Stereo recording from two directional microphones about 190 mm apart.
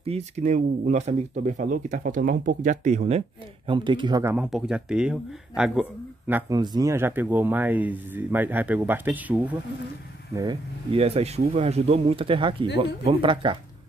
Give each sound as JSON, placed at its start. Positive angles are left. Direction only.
{"t": 0.0, "sound": "speech", "side_deg": -35}
{"t": 4.5, "sound": "speech", "side_deg": -5}
{"t": 6.5, "sound": "speech", "side_deg": -20}
{"t": 10.3, "sound": "speech", "side_deg": -25}